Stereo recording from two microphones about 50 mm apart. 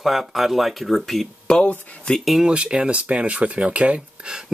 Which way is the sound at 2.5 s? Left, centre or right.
Centre.